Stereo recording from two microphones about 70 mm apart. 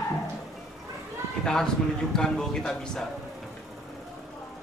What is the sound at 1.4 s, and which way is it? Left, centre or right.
A man's voice, centre.